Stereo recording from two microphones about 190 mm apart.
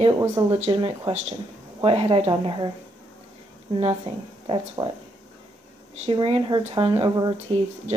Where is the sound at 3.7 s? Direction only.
25° right (ahead or behind).